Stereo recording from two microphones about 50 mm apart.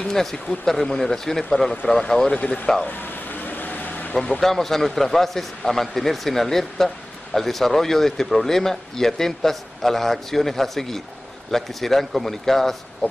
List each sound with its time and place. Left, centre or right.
0.0 s speech: centre
2.3 s speech: left
2.9 s vehicle: left
4.1 s a man's voice: centre